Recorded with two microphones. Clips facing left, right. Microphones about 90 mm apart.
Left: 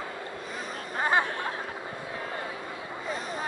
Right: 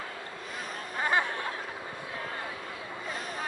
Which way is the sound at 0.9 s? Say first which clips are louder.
Left 3 dB; 35° left (ahead or behind).